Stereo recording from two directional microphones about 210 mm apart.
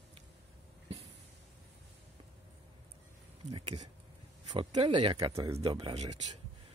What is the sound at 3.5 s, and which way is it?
A man's voice, 25° right (ahead or behind).